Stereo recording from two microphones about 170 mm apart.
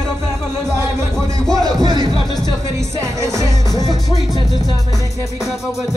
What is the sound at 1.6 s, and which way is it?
Speech, 20° right (ahead or behind).